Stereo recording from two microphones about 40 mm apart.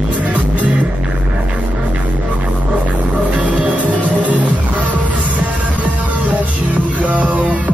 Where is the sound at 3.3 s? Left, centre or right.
Right.